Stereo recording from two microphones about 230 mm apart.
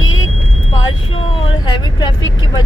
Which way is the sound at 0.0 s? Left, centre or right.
Left.